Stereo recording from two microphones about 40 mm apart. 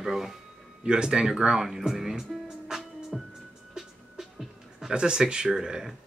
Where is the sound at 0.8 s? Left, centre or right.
Right.